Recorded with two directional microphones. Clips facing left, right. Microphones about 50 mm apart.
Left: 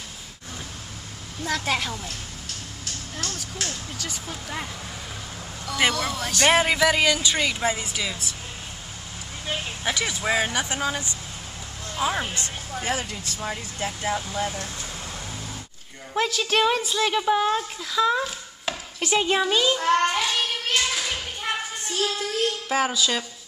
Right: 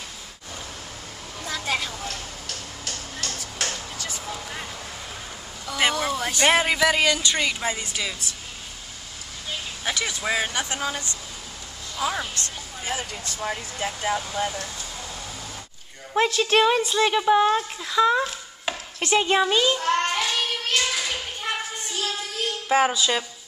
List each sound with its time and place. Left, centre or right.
2.0 s a sound: right
5.7 s speech: centre
9.8 s speech: centre
12.7 s a sound: left
13.1 s speech: centre
14.4 s speech: right
16.1 s speech: centre
19.9 s child singing: centre
20.7 s a sound: centre
22.7 s speech: centre